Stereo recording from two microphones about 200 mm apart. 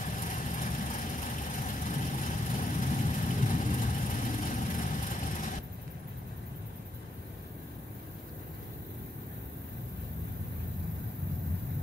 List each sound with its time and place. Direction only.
0.2 s vehicle: 40° left (ahead or behind)